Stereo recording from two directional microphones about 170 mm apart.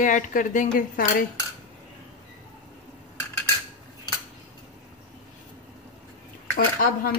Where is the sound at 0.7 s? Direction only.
55° left (ahead or behind).